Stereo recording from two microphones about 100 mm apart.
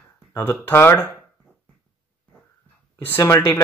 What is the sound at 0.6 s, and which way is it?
Speech, 20° left (ahead or behind).